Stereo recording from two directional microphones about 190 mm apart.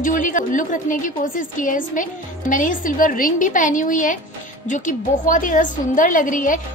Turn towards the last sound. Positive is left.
turn(degrees=45)  # may be behind; listen again after turning